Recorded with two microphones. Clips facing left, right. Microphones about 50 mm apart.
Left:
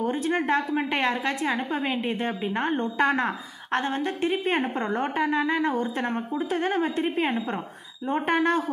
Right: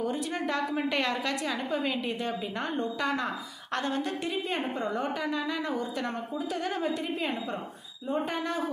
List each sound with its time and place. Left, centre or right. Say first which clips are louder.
0.0 s a woman's voice: left 5 dB; left